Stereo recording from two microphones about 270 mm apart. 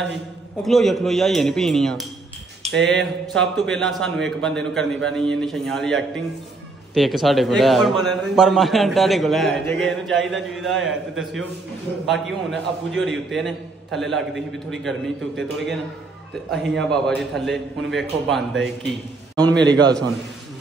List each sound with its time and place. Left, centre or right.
0.6 s a man's voice: centre
2.7 s a sound: right
3.0 s a man's voice: centre
19.7 s a man's voice: centre